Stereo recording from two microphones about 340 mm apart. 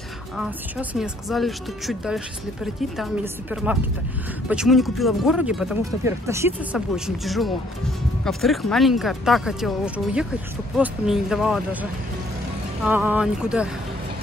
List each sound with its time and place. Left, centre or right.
0.4 s speech: centre